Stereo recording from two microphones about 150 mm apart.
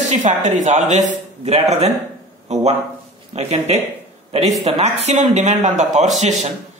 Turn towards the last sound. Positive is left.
turn(degrees=-50)  # may be behind; listen again after turning